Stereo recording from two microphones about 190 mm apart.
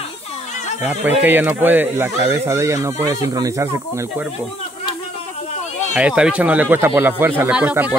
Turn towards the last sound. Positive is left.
turn(degrees=-10)  # may be behind; listen again after turning